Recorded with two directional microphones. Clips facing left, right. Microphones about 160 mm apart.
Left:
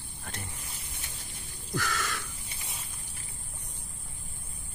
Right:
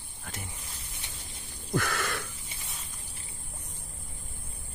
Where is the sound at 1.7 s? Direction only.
55° right (ahead or behind).